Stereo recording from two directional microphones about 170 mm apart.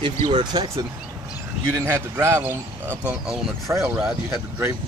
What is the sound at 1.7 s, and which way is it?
Speech, 15° right (ahead or behind).